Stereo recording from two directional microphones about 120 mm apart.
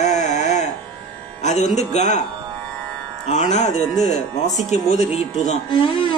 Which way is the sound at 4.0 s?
85° left.